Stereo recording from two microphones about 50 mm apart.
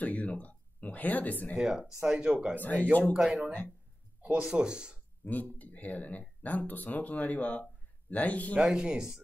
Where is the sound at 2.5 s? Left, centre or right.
Left.